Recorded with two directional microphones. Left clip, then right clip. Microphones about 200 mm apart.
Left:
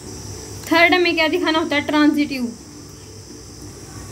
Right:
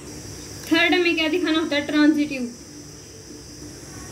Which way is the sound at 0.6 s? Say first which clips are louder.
Left 4 dB; 50° left (ahead or behind).